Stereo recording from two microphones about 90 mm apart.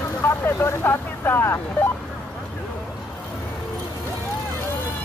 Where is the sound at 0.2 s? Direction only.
30° left (ahead or behind).